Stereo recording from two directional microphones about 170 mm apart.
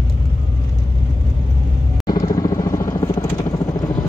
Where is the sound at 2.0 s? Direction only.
25° left (ahead or behind).